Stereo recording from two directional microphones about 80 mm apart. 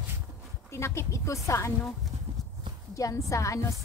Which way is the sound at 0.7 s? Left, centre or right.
Left.